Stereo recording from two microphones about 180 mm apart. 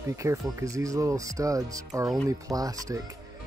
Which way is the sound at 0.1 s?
15° right (ahead or behind).